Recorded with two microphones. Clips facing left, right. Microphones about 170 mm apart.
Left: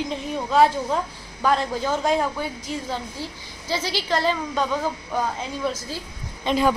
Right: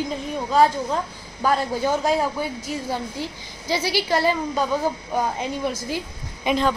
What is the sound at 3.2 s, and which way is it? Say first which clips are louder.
A woman's voice: right 3 dB; 15° right (ahead or behind).